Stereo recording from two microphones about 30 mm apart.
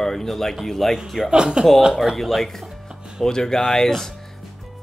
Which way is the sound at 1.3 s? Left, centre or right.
Right.